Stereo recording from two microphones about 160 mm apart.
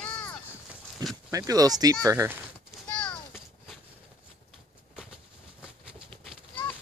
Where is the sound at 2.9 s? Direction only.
10° left (ahead or behind).